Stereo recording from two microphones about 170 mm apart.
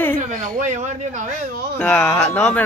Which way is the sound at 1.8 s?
5° left (ahead or behind).